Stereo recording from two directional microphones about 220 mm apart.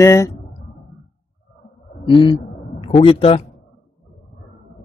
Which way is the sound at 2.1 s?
20° left (ahead or behind).